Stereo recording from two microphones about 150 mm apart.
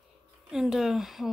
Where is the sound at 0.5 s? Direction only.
Centre (ahead or behind).